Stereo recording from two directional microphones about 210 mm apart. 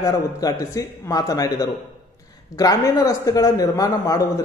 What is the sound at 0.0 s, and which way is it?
A man's voice, 15° left (ahead or behind).